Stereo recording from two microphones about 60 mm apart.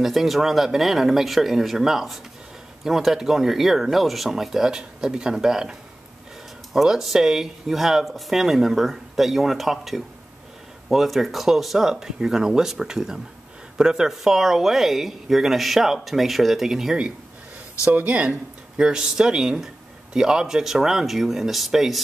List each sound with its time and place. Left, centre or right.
0.0 s speech: centre
17.9 s speech: right; by 22.0 s centre